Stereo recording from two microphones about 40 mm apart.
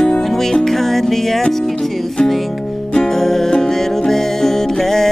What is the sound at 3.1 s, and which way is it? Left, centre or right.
Music, centre.